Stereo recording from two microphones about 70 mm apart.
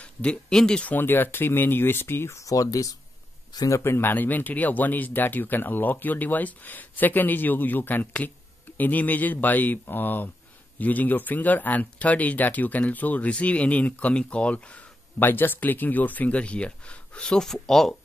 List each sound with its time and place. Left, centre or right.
0.0 s speech: centre
0.9 s speech: left
3.8 s speech: left
4.1 s speech: left
15.1 s speech: left; by 17.9 s centre